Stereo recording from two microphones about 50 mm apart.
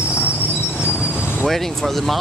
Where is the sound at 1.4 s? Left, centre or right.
Centre.